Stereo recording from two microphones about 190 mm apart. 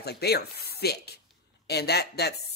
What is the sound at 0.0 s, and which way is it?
Speech, 55° left (ahead or behind).